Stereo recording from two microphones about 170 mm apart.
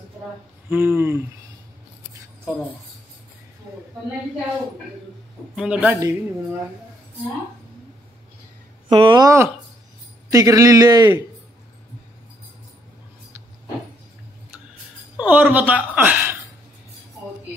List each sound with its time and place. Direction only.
0.7 s a woman's voice: 10° right (ahead or behind)
5.6 s a woman's voice: 5° right (ahead or behind)
8.8 s a man's voice: 30° right (ahead or behind)
15.1 s a woman's voice: 10° right (ahead or behind)